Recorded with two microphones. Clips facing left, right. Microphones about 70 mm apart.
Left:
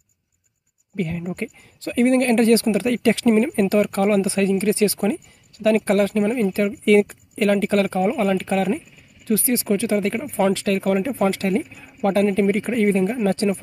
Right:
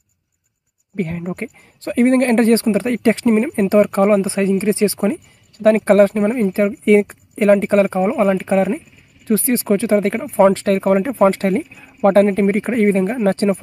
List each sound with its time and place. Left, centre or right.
0.9 s speech: right
9.3 s speech: right